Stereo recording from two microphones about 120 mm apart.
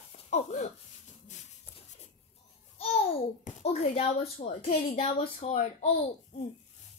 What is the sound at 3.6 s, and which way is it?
A woman's voice, 65° left (ahead or behind).